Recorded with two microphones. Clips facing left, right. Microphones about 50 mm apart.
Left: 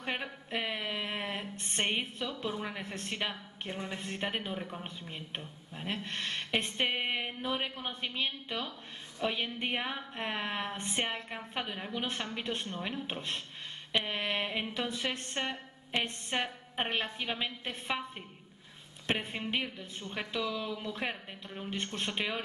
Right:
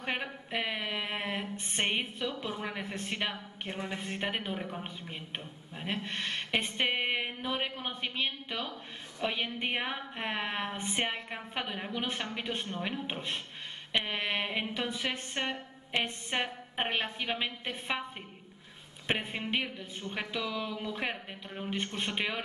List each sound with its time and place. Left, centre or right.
0.0 s a sound: centre
2.8 s a woman's voice: centre
19.0 s a woman's voice: centre